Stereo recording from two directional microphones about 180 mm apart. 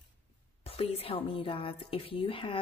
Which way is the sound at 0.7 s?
30° left (ahead or behind).